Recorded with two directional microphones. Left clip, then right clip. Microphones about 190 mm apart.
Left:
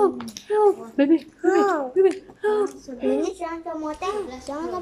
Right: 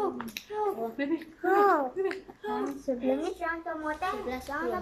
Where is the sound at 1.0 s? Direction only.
60° left (ahead or behind).